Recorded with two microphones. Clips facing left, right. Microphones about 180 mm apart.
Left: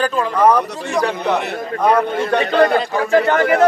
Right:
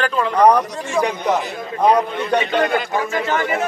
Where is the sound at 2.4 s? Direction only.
40° left (ahead or behind).